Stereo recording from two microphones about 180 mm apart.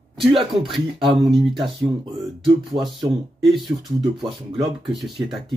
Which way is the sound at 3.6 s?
25° right (ahead or behind).